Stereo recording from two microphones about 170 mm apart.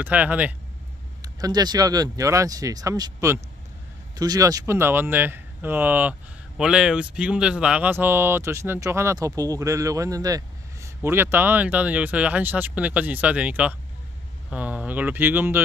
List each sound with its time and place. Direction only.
0.0 s speech: 10° right (ahead or behind)
1.2 s speech: 25° right (ahead or behind)